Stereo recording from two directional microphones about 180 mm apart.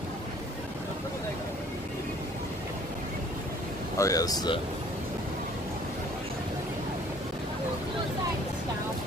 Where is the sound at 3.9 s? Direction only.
20° left (ahead or behind).